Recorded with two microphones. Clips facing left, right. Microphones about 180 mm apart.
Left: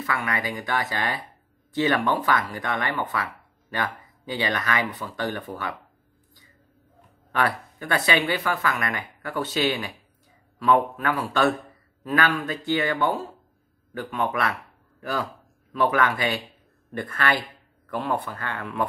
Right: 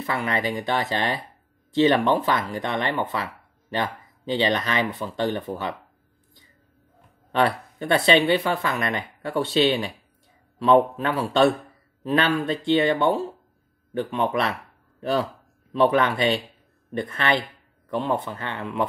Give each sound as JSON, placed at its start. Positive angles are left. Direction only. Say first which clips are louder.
{"t": 0.0, "sound": "speech", "louder": "right 3 dB", "side_deg": -25}
{"t": 4.3, "sound": "speech", "louder": "right 4 dB", "side_deg": -25}
{"t": 7.3, "sound": "speech", "louder": "right 3 dB", "side_deg": -25}